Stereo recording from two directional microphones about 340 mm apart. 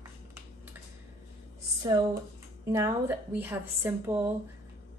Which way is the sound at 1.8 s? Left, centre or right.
Centre.